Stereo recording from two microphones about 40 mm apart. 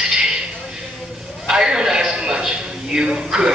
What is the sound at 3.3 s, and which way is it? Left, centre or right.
Speech, centre.